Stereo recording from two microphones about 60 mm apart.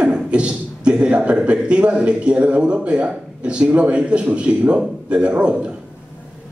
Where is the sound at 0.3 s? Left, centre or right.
Centre.